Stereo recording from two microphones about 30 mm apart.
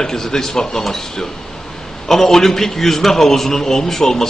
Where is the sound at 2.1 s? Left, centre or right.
Centre.